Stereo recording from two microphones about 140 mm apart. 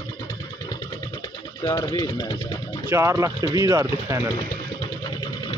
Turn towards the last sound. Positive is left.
turn(degrees=-20)  # may be behind; listen again after turning